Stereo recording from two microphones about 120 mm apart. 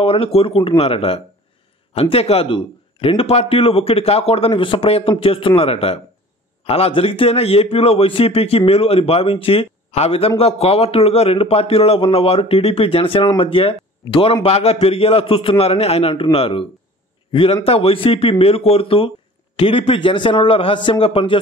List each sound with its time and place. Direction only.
0.0 s a man's voice: 55° left (ahead or behind)